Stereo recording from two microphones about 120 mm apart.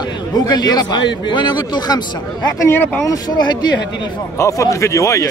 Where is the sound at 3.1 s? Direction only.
35° left (ahead or behind).